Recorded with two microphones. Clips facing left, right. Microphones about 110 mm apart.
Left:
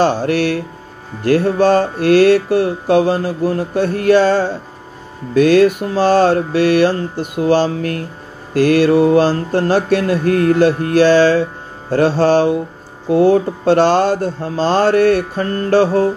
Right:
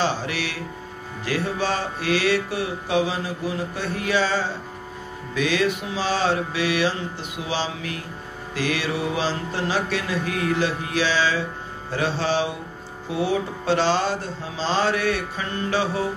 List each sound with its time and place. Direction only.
0.0 s mantra: 50° left (ahead or behind)